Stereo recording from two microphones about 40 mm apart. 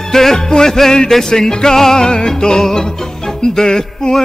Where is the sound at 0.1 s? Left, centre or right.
Centre.